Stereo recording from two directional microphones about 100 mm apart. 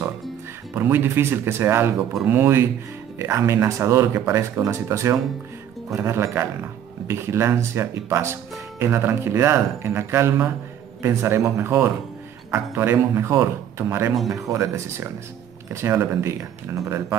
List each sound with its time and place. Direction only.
0.7 s speech: 20° right (ahead or behind)